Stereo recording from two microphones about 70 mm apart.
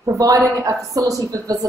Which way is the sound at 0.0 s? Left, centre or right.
Right.